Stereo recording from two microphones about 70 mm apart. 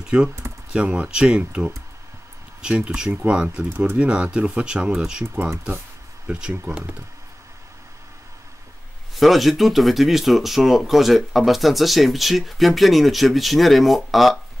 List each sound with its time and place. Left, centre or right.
0.1 s speech: centre
6.2 s speech: centre
9.1 s speech: centre